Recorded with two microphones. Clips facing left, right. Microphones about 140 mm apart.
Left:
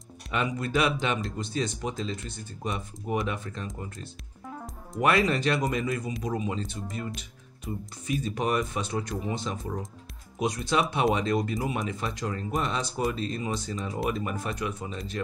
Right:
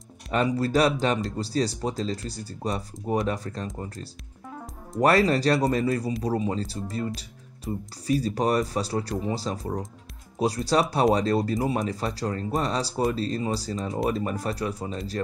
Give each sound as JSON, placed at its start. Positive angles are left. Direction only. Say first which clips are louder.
{"t": 0.3, "sound": "speech", "louder": "right 5 dB", "side_deg": -35}
{"t": 4.5, "sound": "music", "louder": "right 1 dB", "side_deg": 0}
{"t": 5.0, "sound": "speech", "louder": "right 4 dB", "side_deg": -35}